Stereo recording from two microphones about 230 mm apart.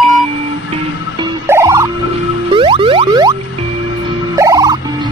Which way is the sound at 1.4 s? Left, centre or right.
Centre.